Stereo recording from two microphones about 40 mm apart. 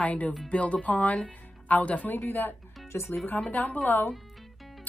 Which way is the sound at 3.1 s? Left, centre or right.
Left.